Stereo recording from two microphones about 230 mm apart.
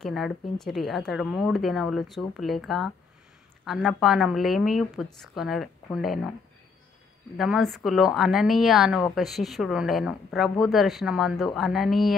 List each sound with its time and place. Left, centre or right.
0.0 s a woman's voice: centre
7.3 s a woman's voice: centre